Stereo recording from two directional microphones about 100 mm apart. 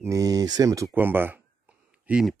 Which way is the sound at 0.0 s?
35° right (ahead or behind).